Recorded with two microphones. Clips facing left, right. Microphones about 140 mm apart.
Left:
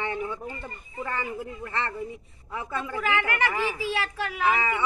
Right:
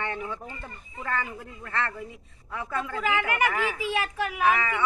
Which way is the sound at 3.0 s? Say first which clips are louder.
Right 1 dB; 15° right (ahead or behind).